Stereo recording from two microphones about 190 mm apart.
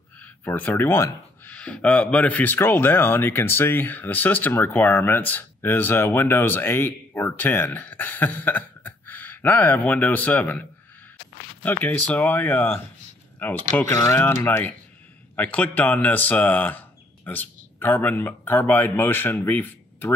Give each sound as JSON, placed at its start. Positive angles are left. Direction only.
{"t": 0.2, "sound": "speech", "side_deg": 10}